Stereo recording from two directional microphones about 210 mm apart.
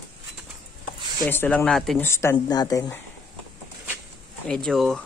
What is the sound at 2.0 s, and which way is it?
Speech, 15° left (ahead or behind).